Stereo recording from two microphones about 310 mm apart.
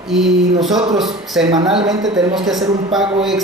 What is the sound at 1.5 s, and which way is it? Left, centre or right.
Speech, centre.